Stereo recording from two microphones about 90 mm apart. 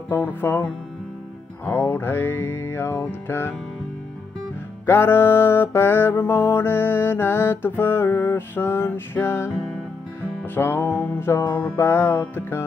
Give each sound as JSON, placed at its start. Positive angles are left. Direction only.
{"t": 0.1, "sound": "mantra", "side_deg": 20}
{"t": 4.8, "sound": "mantra", "side_deg": 25}